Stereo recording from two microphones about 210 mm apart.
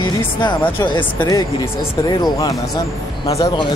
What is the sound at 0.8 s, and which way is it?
Speech, 20° left (ahead or behind).